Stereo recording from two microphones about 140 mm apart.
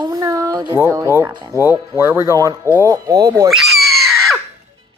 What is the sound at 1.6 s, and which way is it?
Speech, 15° right (ahead or behind).